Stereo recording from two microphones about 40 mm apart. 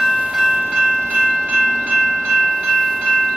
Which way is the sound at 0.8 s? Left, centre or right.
Right.